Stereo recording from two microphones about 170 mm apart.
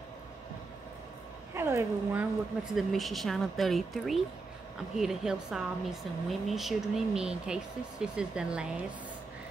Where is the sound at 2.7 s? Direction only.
Centre (ahead or behind).